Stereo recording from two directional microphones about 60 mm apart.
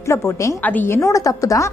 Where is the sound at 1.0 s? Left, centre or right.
Left.